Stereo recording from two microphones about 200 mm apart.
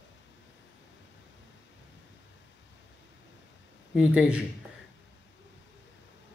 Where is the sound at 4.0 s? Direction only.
5° right (ahead or behind).